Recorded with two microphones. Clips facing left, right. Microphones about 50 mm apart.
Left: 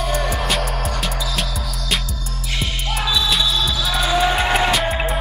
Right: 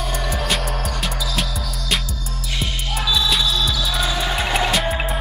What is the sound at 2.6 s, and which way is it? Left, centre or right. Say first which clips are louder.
Music: left 1 dB; centre.